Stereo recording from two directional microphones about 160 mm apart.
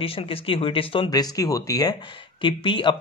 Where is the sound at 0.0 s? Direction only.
35° left (ahead or behind).